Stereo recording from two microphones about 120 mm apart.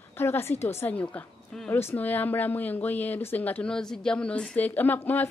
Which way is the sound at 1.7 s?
20° left (ahead or behind).